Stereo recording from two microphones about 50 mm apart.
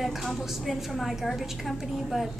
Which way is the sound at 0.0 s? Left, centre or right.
Centre.